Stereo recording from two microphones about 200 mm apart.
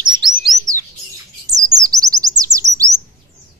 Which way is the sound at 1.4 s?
20° right (ahead or behind).